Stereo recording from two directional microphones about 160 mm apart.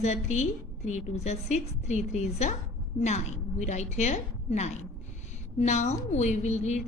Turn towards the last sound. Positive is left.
turn(degrees=45)  # may be behind; listen again after turning